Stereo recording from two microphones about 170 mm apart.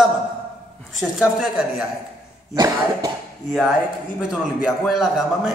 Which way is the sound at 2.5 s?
20° right (ahead or behind).